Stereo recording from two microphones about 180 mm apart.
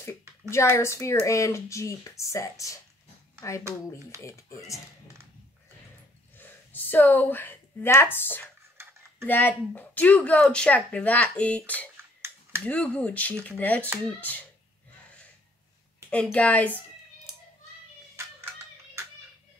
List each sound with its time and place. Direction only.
0.5 s speech: 15° left (ahead or behind)
3.6 s speech: 15° right (ahead or behind)
4.2 s speech: 15° left (ahead or behind)
6.3 s speech: 10° left (ahead or behind)
16.1 s speech: 5° left (ahead or behind)